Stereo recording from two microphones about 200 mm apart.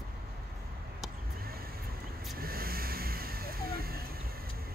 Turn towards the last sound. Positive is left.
turn(degrees=-50)  # may be behind; listen again after turning